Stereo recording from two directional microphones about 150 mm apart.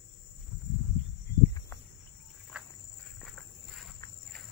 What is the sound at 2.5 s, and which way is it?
Insect, 5° right (ahead or behind).